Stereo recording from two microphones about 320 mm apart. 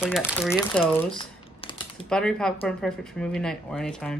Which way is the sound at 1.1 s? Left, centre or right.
Centre.